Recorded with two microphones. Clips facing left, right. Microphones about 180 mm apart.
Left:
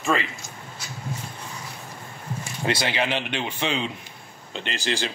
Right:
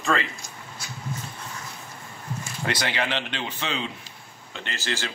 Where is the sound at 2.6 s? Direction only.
25° left (ahead or behind).